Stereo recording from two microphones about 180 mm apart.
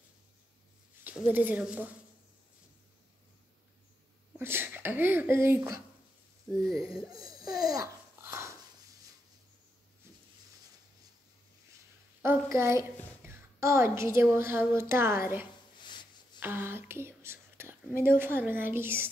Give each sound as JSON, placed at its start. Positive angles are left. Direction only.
{"t": 1.0, "sound": "speech", "side_deg": -10}
{"t": 4.4, "sound": "speech", "side_deg": -10}
{"t": 6.6, "sound": "speech", "side_deg": 0}
{"t": 7.4, "sound": "babbling", "side_deg": -20}
{"t": 12.2, "sound": "a woman's voice", "side_deg": -15}
{"t": 15.8, "sound": "a sound", "side_deg": 25}
{"t": 16.3, "sound": "whispering", "side_deg": -10}
{"t": 18.0, "sound": "speech", "side_deg": -10}